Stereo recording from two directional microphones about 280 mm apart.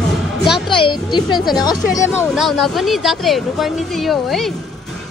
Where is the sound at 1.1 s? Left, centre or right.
Centre.